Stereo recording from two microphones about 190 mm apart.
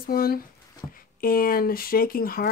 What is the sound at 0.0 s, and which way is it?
Speech, 50° left (ahead or behind).